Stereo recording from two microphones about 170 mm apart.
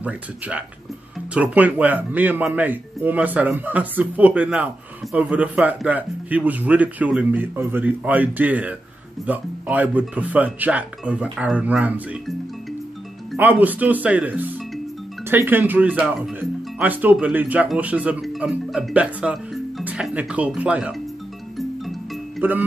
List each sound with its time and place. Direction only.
0.0 s speech: 10° right (ahead or behind)
13.4 s speech: 10° right (ahead or behind)
21.5 s music: centre (ahead or behind)
22.4 s speech: 10° right (ahead or behind)